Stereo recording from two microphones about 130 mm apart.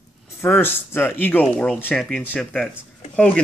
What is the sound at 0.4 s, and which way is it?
Speech, 15° left (ahead or behind).